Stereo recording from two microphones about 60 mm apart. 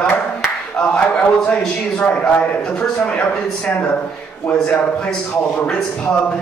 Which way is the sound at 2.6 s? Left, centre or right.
Centre.